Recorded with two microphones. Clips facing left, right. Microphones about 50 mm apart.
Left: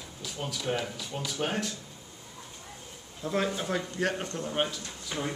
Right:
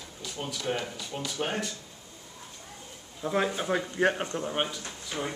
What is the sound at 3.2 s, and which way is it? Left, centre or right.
Speech, centre.